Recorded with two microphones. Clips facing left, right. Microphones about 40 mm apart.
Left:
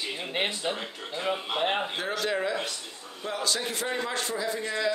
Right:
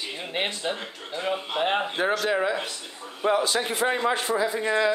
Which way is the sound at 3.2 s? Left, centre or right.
Right.